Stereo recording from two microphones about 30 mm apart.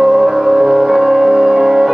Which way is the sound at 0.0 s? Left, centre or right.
Centre.